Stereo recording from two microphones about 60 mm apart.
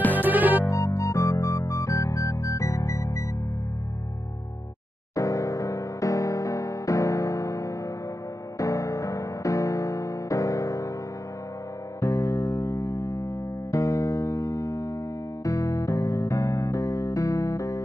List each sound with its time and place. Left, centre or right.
0.1 s music: right
0.7 s music: left
5.1 s music: left
12.0 s music: left